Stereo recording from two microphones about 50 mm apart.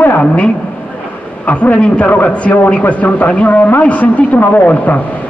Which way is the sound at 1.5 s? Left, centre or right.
Left.